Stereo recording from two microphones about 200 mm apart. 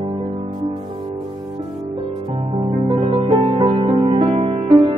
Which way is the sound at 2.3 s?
30° right (ahead or behind).